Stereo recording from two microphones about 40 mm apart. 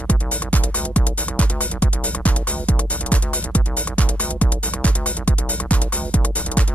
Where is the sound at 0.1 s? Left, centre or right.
Left.